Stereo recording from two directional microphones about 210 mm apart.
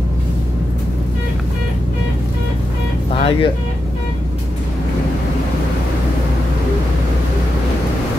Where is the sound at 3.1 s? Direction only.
25° left (ahead or behind).